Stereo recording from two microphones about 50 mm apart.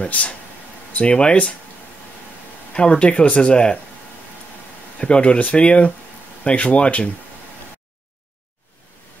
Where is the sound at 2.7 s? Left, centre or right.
Centre.